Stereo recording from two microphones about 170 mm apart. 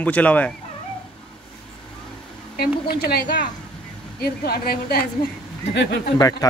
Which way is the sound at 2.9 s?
65° left (ahead or behind).